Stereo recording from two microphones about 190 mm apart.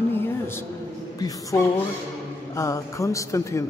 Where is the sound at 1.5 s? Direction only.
15° left (ahead or behind).